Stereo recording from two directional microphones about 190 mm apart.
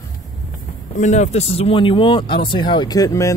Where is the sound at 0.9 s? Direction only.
40° left (ahead or behind).